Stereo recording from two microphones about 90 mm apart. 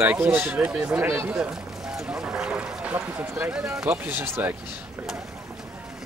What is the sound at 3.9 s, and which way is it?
Speech, 20° right (ahead or behind).